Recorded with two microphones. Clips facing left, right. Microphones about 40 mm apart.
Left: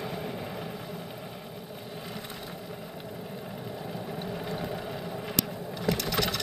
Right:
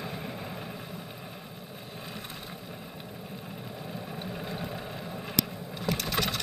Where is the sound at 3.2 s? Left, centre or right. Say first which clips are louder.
Left 3 dB; centre.